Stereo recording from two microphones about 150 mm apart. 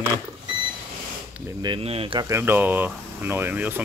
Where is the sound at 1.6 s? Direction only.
35° right (ahead or behind).